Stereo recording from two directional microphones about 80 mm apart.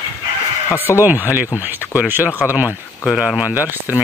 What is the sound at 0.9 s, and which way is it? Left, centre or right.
Speech, right.